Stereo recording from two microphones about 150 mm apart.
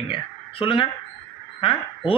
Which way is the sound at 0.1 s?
35° left (ahead or behind).